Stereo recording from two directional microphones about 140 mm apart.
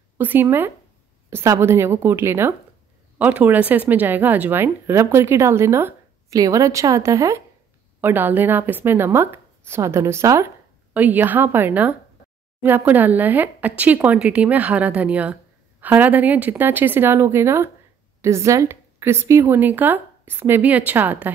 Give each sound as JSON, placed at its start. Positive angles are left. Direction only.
{"t": 0.2, "sound": "a woman's voice", "side_deg": -15}